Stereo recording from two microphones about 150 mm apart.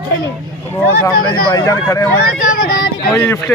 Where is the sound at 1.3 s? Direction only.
30° left (ahead or behind).